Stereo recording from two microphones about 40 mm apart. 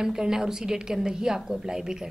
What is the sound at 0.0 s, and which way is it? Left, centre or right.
A woman's voice, centre.